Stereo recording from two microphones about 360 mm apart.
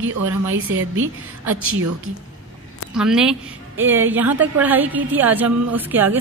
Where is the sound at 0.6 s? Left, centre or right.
Right.